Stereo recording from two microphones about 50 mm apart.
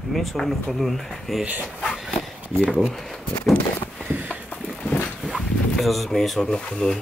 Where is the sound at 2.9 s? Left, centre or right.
Centre.